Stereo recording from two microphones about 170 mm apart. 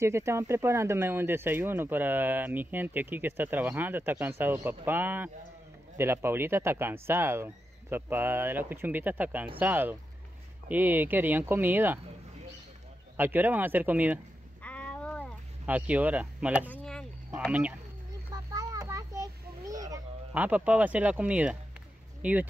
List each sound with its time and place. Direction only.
0.0 s speech: 15° right (ahead or behind)
13.1 s speech: 10° right (ahead or behind)
14.6 s a sound: 10° left (ahead or behind)
15.6 s speech: 10° right (ahead or behind)
18.3 s children playing: 20° right (ahead or behind)
20.3 s speech: 10° right (ahead or behind)